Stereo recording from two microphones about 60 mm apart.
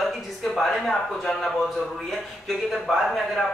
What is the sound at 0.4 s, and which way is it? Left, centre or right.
A man's voice, centre.